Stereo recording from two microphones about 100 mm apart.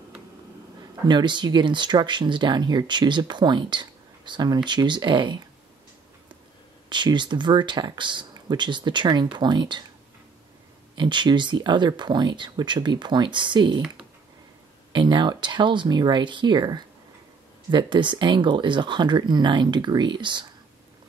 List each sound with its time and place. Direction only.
1.0 s speech: 50° right (ahead or behind)
6.9 s speech: 50° right (ahead or behind)
11.0 s speech: 50° right (ahead or behind)
14.9 s speech: 50° right (ahead or behind)